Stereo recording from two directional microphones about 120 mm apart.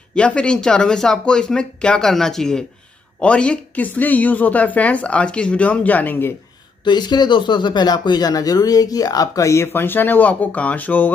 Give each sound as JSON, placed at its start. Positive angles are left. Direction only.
{"t": 0.1, "sound": "a woman's voice", "side_deg": 10}
{"t": 6.8, "sound": "speech", "side_deg": 40}